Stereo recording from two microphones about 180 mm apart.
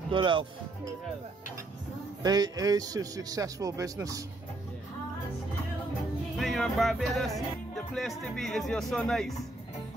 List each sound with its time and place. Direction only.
0.1 s speech: 30° right (ahead or behind)
2.2 s speech: 20° right (ahead or behind)
6.3 s music: centre (ahead or behind)
8.4 s speech: centre (ahead or behind)